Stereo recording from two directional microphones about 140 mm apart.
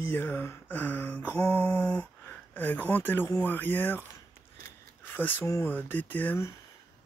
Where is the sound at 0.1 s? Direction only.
15° left (ahead or behind).